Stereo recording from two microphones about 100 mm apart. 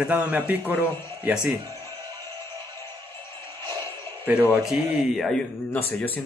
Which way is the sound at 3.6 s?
25° left (ahead or behind).